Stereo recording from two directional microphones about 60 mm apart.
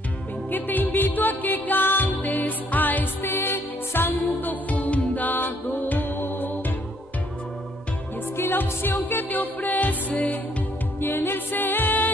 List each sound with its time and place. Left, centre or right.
0.5 s music: left
8.4 s music: left
11.0 s music: left